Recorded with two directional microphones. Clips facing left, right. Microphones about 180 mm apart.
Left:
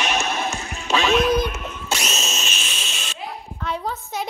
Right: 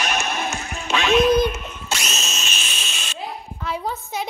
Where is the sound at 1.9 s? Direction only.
40° left (ahead or behind).